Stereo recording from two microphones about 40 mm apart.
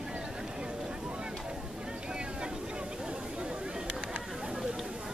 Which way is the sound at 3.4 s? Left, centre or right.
Right.